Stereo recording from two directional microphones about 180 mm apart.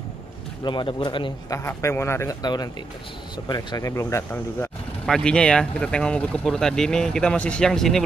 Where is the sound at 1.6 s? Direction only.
15° left (ahead or behind).